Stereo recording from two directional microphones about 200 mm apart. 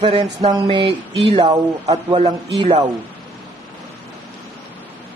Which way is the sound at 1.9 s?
25° right (ahead or behind).